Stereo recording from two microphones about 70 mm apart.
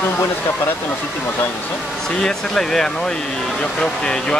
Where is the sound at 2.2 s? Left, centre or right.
Centre.